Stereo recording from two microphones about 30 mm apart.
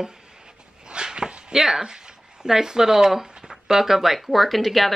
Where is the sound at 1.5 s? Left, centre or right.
Centre.